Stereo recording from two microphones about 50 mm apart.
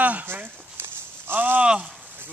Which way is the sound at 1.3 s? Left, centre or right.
Right.